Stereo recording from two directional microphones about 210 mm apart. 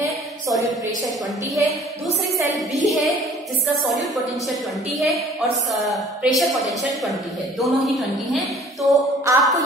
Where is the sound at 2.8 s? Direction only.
Centre (ahead or behind).